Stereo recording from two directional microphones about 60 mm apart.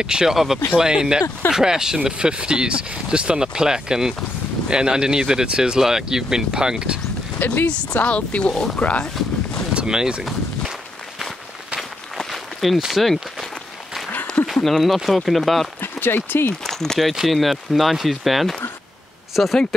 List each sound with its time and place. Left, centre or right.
0.0 s speech: centre
7.3 s speech: left
8.7 s a sound: centre
9.8 s speech: centre
11.1 s walk: centre
12.2 s a sound: centre
12.8 s speech: centre
14.4 s a sound: centre
15.0 s speech: centre
15.8 s speech: left
16.6 s speech: centre
17.1 s speech: centre